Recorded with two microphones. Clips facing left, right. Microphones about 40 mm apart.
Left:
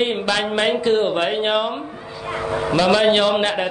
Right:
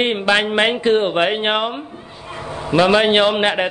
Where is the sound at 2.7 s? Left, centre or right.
Right.